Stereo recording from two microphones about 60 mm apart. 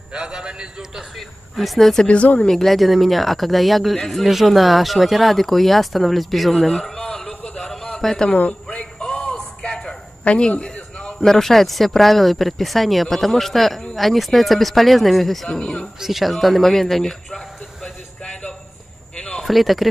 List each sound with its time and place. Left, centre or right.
0.1 s a man's voice: centre
1.6 s speech: centre
2.0 s speech: left
2.5 s speech: centre
8.3 s speech: left
8.6 s a sound: centre
11.2 s speech: centre
16.0 s speech: centre
17.8 s a sound: centre
19.4 s speech: centre